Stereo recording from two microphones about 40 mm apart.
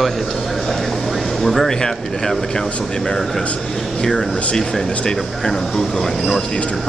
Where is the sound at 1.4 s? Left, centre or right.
Centre.